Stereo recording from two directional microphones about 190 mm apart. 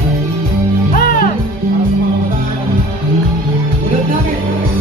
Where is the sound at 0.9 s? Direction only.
50° left (ahead or behind).